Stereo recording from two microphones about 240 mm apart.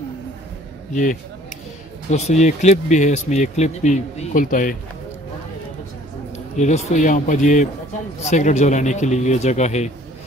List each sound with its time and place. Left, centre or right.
2.0 s speech: left
6.3 s speech: left